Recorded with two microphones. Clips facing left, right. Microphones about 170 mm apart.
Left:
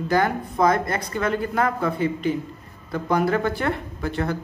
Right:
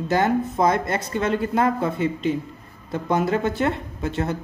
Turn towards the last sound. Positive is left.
turn(degrees=-20)  # may be behind; listen again after turning